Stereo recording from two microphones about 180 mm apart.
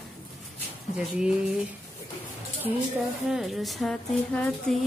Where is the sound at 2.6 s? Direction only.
5° right (ahead or behind).